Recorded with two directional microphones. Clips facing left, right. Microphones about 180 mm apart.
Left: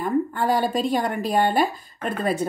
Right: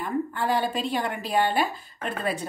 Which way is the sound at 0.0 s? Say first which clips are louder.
Left 5 dB; 45° left (ahead or behind).